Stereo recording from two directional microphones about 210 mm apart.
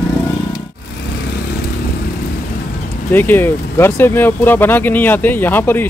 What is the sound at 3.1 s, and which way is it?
Speech, 10° left (ahead or behind).